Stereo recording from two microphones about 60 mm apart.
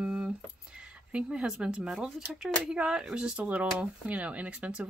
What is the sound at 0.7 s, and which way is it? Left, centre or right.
Speech, centre.